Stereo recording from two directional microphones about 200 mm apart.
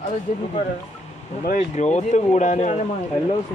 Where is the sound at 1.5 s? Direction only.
35° left (ahead or behind).